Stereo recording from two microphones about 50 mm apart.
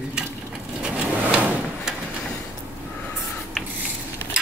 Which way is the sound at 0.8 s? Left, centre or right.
Right.